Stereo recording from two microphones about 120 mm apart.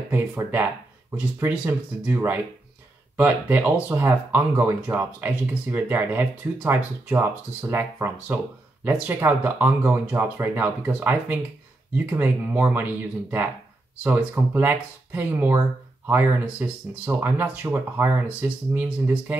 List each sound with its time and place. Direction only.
0.1 s speech: 15° right (ahead or behind)
11.9 s speech: 15° right (ahead or behind)